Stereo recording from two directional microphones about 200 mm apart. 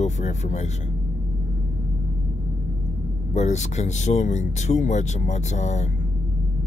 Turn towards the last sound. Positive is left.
turn(degrees=35)  # may be behind; listen again after turning